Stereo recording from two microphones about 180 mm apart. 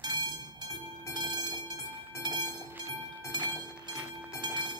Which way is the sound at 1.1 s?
20° right (ahead or behind).